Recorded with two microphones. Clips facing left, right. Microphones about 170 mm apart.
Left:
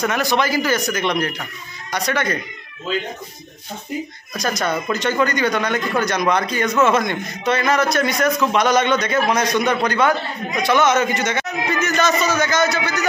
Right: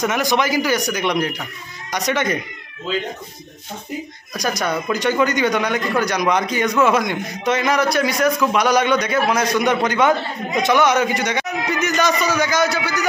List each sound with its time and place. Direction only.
0.0 s a man's voice: 15° right (ahead or behind)
4.3 s a man's voice: 10° right (ahead or behind)